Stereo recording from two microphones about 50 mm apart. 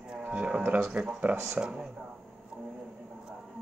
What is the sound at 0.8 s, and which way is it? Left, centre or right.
Speech, centre.